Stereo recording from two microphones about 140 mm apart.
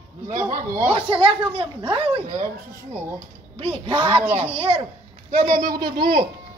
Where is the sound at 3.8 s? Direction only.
35° right (ahead or behind).